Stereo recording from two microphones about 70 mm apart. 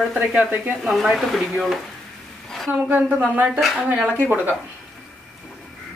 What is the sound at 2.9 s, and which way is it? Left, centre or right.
A woman's voice, right.